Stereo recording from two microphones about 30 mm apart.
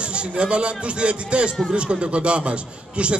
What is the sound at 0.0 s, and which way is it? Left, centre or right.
A man's voice, right.